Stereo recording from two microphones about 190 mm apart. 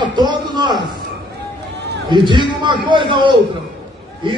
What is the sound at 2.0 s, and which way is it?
A man's voice, 25° right (ahead or behind).